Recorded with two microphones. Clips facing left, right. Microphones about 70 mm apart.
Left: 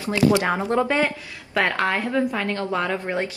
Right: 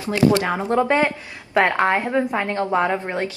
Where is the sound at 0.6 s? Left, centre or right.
Right.